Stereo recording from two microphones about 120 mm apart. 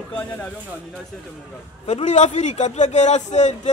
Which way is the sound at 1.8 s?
65° left (ahead or behind).